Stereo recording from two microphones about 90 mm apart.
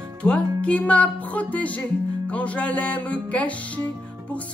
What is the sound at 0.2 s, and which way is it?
Music, 10° left (ahead or behind).